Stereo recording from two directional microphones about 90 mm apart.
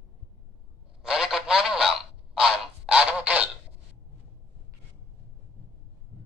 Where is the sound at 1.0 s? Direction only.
5° right (ahead or behind).